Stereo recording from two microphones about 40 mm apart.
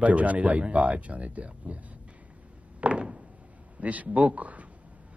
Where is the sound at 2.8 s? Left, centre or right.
Right.